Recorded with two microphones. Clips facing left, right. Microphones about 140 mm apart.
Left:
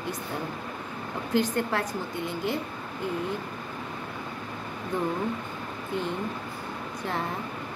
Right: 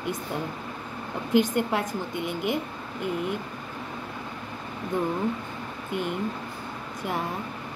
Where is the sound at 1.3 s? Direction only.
20° right (ahead or behind).